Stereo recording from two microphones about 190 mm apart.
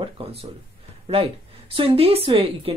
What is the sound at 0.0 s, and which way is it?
A woman's voice, 30° right (ahead or behind).